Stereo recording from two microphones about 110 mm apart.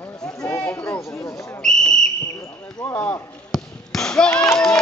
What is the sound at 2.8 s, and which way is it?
Speech, 15° left (ahead or behind).